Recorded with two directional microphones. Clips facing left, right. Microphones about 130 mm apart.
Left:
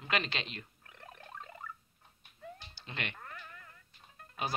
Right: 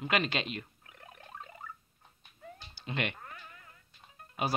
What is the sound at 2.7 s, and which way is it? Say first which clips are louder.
Cat: right 8 dB; 15° right (ahead or behind).